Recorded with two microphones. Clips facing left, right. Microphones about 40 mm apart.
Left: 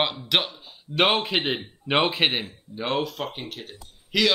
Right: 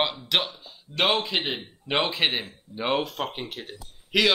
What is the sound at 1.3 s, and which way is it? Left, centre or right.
Speech, centre.